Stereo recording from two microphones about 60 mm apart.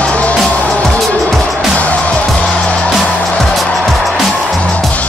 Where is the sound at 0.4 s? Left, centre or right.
Centre.